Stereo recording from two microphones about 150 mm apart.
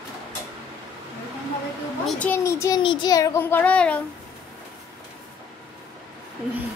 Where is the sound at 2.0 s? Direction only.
10° left (ahead or behind).